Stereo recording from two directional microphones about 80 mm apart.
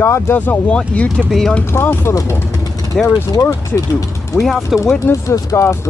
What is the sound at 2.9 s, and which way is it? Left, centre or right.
Speech, centre.